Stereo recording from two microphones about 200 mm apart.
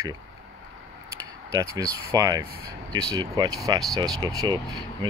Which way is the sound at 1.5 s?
20° right (ahead or behind).